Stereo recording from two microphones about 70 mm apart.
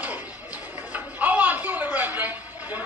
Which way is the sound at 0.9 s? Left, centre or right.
Right.